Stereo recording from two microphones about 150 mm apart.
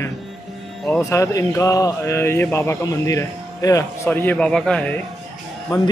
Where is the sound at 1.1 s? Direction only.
20° left (ahead or behind).